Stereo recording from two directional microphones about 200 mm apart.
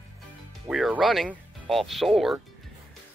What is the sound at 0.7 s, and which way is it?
Speech, centre (ahead or behind).